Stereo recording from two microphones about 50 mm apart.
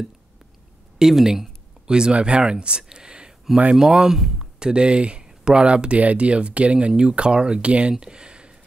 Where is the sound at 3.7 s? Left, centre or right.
Centre.